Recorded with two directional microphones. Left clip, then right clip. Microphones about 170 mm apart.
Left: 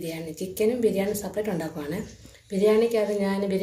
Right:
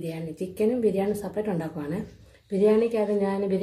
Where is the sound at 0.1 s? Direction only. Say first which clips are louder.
Left 1 dB; 35° right (ahead or behind).